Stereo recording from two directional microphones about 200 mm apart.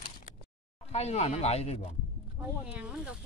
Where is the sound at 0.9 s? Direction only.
35° left (ahead or behind).